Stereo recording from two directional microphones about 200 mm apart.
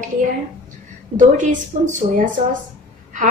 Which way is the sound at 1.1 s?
40° right (ahead or behind).